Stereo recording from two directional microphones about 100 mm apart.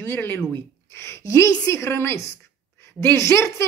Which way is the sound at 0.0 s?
25° left (ahead or behind).